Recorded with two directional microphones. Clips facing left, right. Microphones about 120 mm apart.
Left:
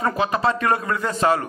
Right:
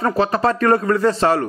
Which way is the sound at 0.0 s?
35° right (ahead or behind).